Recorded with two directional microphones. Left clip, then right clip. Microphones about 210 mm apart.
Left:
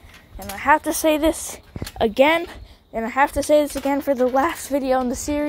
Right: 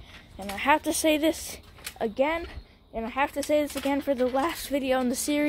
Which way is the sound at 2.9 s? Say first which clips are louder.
Left 8 dB; 20° left (ahead or behind).